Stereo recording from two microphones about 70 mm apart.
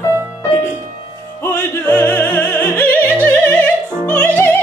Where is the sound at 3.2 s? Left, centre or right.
Left.